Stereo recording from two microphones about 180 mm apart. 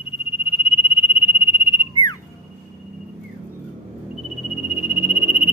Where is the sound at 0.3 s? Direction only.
30° left (ahead or behind).